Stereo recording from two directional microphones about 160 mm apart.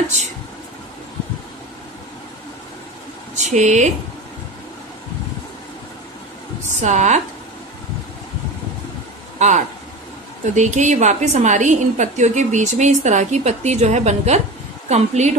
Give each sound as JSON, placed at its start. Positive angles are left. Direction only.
{"t": 3.3, "sound": "speech", "side_deg": -50}
{"t": 6.8, "sound": "a woman's voice", "side_deg": -50}
{"t": 9.4, "sound": "a woman's voice", "side_deg": -45}